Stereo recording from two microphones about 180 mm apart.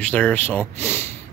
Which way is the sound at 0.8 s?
10° left (ahead or behind).